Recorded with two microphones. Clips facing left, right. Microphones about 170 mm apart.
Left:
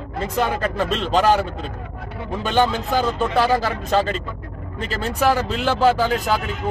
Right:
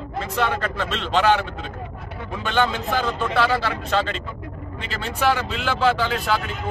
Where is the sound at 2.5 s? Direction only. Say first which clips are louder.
Left 3 dB; 40° left (ahead or behind).